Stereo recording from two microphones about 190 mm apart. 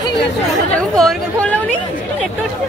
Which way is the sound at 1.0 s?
Centre (ahead or behind).